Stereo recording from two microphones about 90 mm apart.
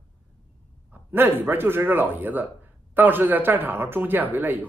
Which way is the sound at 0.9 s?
25° right (ahead or behind).